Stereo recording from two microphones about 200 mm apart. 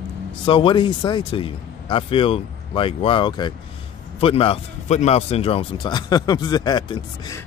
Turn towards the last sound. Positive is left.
turn(degrees=20)  # may be behind; listen again after turning